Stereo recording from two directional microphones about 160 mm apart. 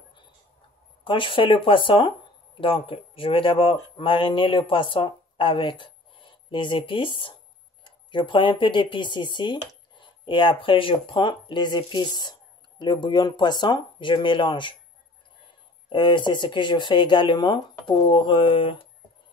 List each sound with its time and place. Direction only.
1.0 s speech: 30° left (ahead or behind)
15.9 s speech: 30° left (ahead or behind)